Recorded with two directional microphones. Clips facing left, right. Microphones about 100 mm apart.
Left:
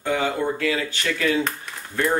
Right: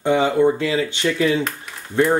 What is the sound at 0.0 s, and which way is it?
Speech, 25° right (ahead or behind).